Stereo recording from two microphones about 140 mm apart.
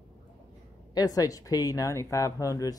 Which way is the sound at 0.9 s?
25° left (ahead or behind).